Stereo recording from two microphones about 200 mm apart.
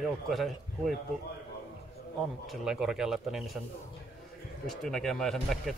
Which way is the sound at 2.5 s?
Centre (ahead or behind).